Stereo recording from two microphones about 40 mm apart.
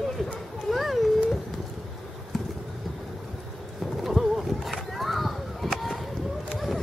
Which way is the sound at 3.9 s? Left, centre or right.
Centre.